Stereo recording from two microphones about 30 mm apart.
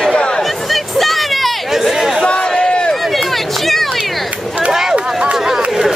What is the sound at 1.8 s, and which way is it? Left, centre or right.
Chatter, centre.